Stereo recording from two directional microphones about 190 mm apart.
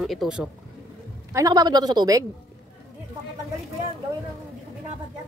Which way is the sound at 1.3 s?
20° right (ahead or behind).